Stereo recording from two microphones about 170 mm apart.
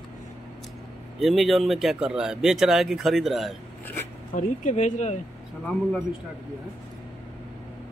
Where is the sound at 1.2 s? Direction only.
Centre (ahead or behind).